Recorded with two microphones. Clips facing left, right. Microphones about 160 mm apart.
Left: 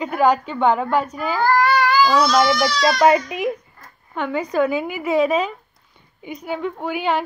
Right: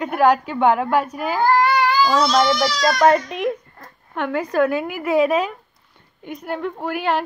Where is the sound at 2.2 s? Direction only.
25° right (ahead or behind).